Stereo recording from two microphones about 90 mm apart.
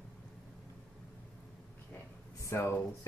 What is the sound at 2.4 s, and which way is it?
Speech, 30° left (ahead or behind).